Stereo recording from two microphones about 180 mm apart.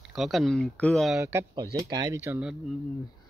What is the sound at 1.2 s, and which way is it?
Speech, 15° right (ahead or behind).